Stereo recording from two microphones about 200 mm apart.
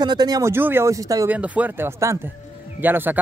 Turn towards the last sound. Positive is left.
turn(degrees=-10)  # may be behind; listen again after turning